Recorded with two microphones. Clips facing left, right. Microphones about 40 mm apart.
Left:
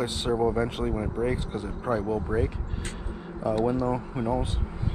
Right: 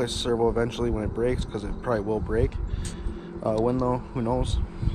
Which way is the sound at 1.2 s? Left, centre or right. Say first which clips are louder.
Right 3 dB; centre.